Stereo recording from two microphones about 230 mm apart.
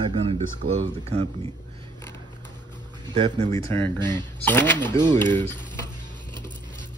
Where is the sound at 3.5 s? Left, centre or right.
Centre.